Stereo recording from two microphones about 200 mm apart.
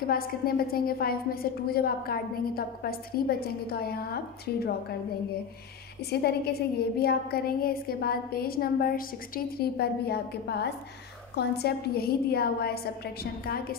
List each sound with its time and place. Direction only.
0.0 s a woman's voice: 50° left (ahead or behind)
6.0 s a woman's voice: 55° left (ahead or behind)